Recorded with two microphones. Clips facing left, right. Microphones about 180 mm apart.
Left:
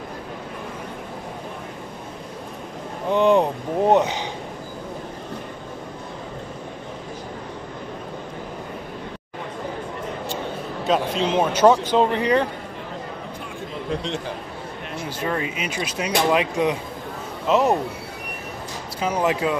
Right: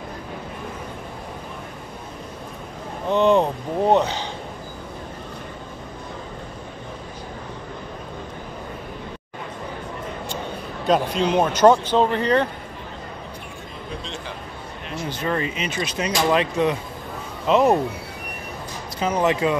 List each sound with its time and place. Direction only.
3.1 s speech: 10° left (ahead or behind)
10.9 s speech: centre (ahead or behind)
15.0 s speech: 5° left (ahead or behind)
18.9 s speech: 5° left (ahead or behind)